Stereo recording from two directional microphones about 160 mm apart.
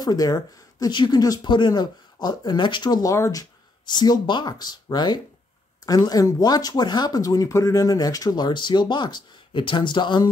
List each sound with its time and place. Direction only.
0.0 s speech: 25° left (ahead or behind)